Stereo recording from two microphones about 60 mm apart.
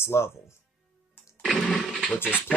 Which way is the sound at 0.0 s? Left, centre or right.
Left.